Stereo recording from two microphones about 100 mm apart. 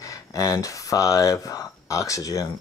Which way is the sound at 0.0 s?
35° left (ahead or behind).